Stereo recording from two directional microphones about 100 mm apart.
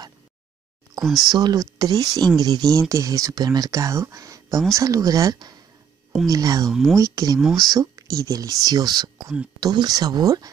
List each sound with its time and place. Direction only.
1.0 s speech: centre (ahead or behind)
1.3 s speech: 40° right (ahead or behind)
6.7 s speech: centre (ahead or behind)
7.0 s speech: 35° right (ahead or behind)
7.3 s speech: centre (ahead or behind)
7.6 s speech: 40° right (ahead or behind)